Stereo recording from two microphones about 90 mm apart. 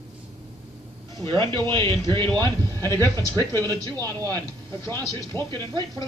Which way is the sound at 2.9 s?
45° right (ahead or behind).